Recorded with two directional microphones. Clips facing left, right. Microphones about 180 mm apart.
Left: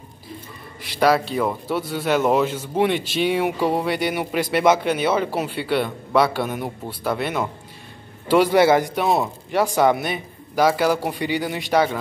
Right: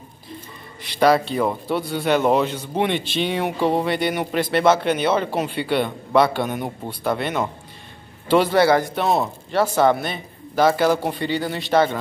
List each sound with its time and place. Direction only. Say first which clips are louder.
0.8 s a man's voice: right 1 dB; 5° left (ahead or behind)
9.0 s a man's voice: even; 5° left (ahead or behind)